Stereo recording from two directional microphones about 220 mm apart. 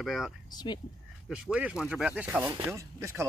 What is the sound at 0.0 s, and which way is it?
Speech, centre (ahead or behind).